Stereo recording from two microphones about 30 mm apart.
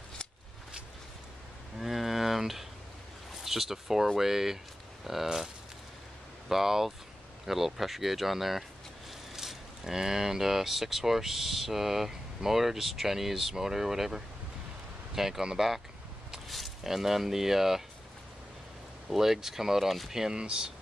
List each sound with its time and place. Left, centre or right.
1.8 s a sound: centre
3.4 s speech: centre
6.5 s speech: centre
19.0 s speech: centre
20.3 s speech: right